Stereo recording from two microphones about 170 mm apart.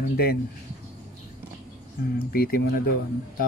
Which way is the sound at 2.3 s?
60° left (ahead or behind).